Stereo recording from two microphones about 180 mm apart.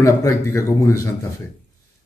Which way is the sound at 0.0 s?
15° left (ahead or behind).